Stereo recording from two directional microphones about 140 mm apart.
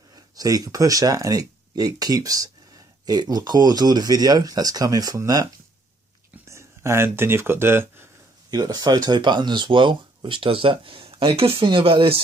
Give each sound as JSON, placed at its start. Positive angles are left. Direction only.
{"t": 0.1, "sound": "speech", "side_deg": -25}
{"t": 8.5, "sound": "speech", "side_deg": -25}